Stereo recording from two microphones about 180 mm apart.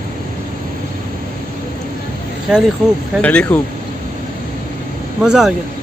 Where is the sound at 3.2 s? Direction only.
5° left (ahead or behind).